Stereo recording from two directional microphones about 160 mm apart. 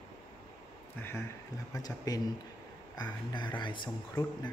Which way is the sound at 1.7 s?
25° left (ahead or behind).